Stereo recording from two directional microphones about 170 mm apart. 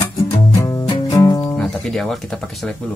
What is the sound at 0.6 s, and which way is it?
Music, 20° left (ahead or behind).